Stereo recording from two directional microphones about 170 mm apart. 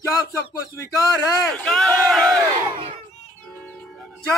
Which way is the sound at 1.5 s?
5° left (ahead or behind).